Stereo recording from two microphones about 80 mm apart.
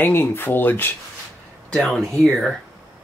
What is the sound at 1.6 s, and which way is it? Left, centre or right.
Speech, centre.